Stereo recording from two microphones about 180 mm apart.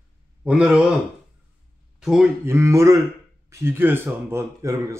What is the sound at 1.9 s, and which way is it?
Speech, centre (ahead or behind).